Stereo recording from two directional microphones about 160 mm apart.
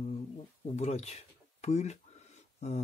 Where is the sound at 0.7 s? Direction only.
45° left (ahead or behind).